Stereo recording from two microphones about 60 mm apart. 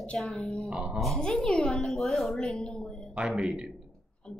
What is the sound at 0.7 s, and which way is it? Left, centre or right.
Speech, centre.